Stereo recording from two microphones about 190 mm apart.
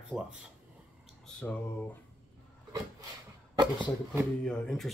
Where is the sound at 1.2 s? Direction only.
10° left (ahead or behind).